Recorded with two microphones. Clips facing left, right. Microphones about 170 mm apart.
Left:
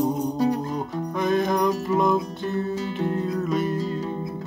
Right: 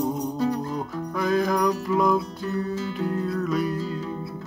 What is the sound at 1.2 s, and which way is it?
Music, centre (ahead or behind).